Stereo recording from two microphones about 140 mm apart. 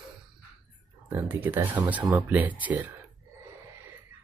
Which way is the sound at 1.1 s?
15° right (ahead or behind).